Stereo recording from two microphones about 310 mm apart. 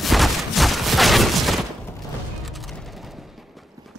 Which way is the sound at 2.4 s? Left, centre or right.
Centre.